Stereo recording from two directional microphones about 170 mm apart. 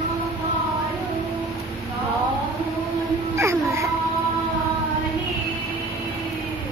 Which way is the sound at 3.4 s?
15° right (ahead or behind).